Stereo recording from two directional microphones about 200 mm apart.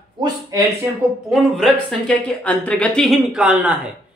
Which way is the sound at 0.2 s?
15° right (ahead or behind).